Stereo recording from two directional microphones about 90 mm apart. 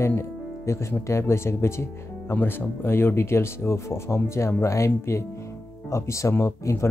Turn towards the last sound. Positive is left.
turn(degrees=30)  # may be behind; listen again after turning